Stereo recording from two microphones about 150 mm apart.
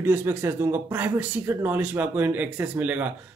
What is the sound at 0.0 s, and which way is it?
Speech, 15° right (ahead or behind).